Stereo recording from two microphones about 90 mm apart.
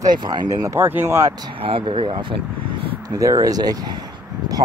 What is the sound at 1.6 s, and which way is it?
Speech, 85° right.